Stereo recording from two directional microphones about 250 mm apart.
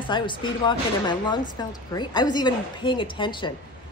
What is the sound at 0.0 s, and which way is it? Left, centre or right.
A woman's voice, centre.